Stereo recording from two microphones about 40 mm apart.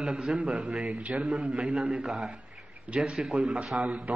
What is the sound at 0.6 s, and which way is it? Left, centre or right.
Speech, centre.